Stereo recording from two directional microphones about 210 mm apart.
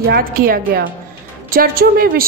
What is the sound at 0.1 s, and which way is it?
A woman's voice, 45° right (ahead or behind).